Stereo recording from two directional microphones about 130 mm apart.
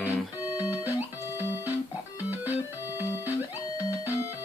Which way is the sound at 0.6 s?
15° right (ahead or behind).